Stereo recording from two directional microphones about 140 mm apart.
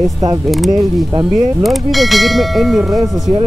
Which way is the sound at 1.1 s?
30° right (ahead or behind).